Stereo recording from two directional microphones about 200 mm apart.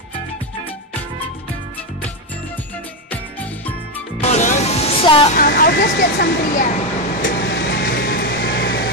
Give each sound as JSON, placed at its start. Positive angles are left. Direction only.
{"t": 3.1, "sound": "music", "side_deg": 10}
{"t": 4.2, "sound": "music", "side_deg": 35}
{"t": 5.3, "sound": "vehicle", "side_deg": 45}